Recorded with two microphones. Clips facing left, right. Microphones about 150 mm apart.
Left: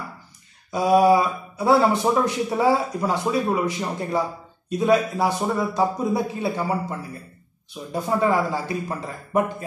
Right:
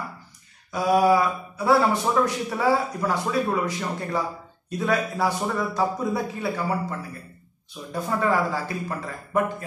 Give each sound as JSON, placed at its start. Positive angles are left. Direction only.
{"t": 0.7, "sound": "mantra", "side_deg": 20}
{"t": 2.2, "sound": "speech", "side_deg": 20}